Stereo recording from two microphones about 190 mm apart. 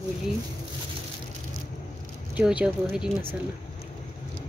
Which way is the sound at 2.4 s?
5° right (ahead or behind).